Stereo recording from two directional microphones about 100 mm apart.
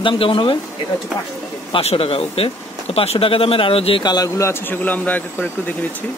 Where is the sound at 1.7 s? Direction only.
80° left.